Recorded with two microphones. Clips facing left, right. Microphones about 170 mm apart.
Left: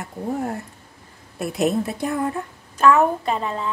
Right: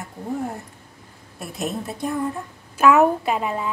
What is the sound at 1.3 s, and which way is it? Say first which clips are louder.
A woman's voice: left 7 dB; 75° left (ahead or behind).